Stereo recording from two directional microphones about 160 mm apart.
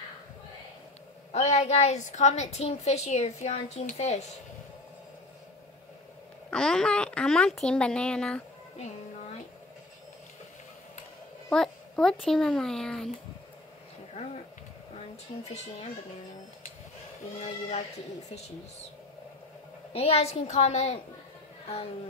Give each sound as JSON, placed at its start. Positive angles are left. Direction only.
{"t": 1.3, "sound": "a woman's voice", "side_deg": 45}
{"t": 6.5, "sound": "a child's voice", "side_deg": 5}
{"t": 11.5, "sound": "a child's voice", "side_deg": 5}
{"t": 14.2, "sound": "speech", "side_deg": 40}
{"t": 15.4, "sound": "a woman's voice", "side_deg": 45}
{"t": 17.4, "sound": "a woman's voice", "side_deg": 45}
{"t": 19.9, "sound": "a woman's voice", "side_deg": 40}